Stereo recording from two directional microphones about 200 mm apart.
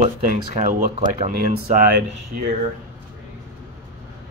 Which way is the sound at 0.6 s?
40° right (ahead or behind).